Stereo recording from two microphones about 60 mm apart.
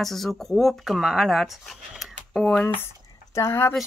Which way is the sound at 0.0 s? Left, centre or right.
Centre.